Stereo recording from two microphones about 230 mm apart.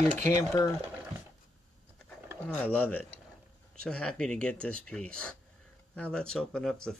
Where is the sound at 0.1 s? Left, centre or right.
Right.